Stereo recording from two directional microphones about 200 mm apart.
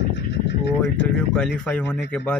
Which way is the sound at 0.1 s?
60° left (ahead or behind).